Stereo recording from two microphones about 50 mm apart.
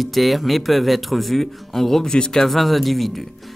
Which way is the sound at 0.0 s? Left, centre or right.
Centre.